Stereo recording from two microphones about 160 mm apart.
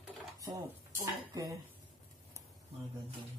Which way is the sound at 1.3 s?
20° right (ahead or behind).